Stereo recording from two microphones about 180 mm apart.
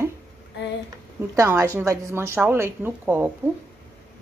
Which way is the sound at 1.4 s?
15° right (ahead or behind).